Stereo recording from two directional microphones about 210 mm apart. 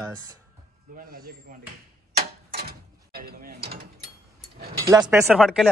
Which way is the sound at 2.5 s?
45° right (ahead or behind).